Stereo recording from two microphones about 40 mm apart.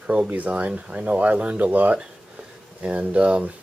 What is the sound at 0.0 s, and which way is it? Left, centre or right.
Speech, right.